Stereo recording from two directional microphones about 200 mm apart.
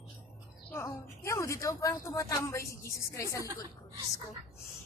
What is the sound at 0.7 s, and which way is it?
A woman's voice, 15° left (ahead or behind).